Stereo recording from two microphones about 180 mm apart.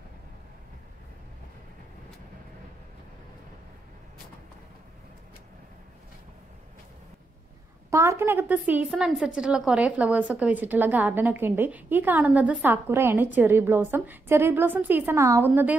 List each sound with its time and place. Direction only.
7.9 s a woman's voice: 15° right (ahead or behind)